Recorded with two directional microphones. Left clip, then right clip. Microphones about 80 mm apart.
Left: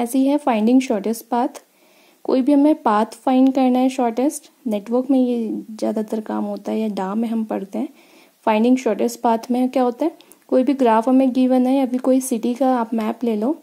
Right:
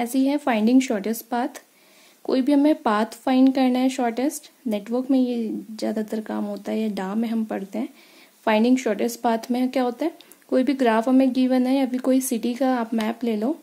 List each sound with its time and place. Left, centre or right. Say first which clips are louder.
0.0 s speech: left 4 dB; left